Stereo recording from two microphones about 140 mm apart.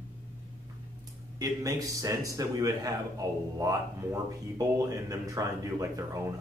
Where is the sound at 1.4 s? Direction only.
25° right (ahead or behind).